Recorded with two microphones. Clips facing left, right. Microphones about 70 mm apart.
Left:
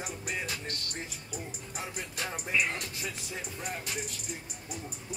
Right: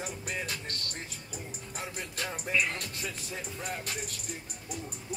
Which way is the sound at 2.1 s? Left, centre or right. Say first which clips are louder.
Right 1 dB; centre.